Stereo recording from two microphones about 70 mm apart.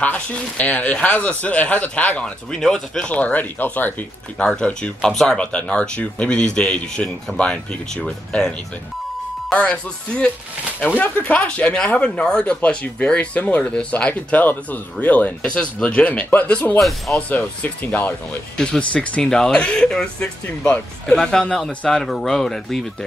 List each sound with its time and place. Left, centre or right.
0.0 s speech: centre
4.4 s speech: centre